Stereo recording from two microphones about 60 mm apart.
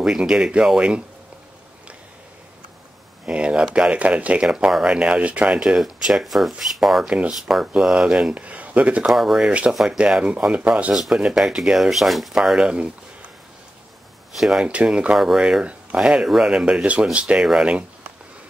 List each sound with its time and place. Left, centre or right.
0.0 s speech: centre
3.3 s speech: centre
5.6 s speech: centre
7.1 s speech: centre
9.1 s speech: centre; by 11.0 s right
11.0 s speech: centre
12.6 s speech: centre
14.3 s speech: centre
14.6 s speech: centre